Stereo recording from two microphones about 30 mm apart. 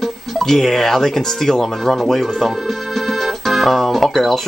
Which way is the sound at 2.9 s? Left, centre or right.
Centre.